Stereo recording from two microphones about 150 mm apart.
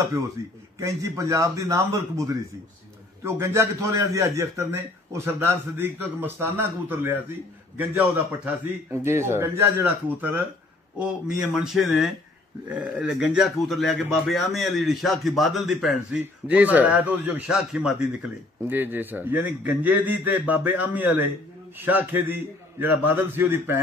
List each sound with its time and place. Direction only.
0.4 s a man's voice: 20° right (ahead or behind)
8.9 s a man's voice: 15° right (ahead or behind)